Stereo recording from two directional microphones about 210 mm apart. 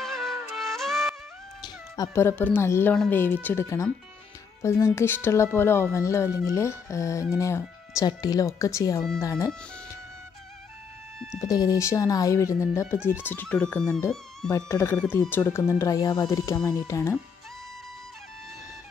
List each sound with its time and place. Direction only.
0.0 s music: centre (ahead or behind)
1.6 s speech: 15° left (ahead or behind)
11.4 s speech: 15° left (ahead or behind)
14.5 s speech: 15° left (ahead or behind)